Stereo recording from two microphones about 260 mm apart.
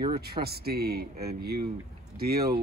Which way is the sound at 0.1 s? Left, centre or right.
Right.